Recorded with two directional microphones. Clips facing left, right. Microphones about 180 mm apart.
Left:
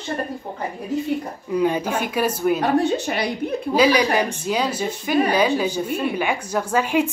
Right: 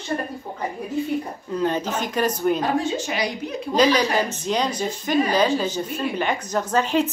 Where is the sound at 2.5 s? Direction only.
65° left (ahead or behind).